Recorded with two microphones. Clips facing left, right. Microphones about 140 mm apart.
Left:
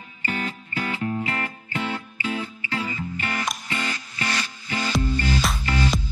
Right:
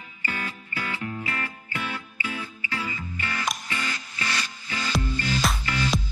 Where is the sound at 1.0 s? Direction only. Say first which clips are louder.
Left 5 dB; 35° left (ahead or behind).